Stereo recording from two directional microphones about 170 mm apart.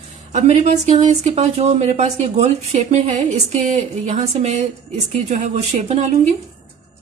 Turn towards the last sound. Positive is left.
turn(degrees=-40)  # may be behind; listen again after turning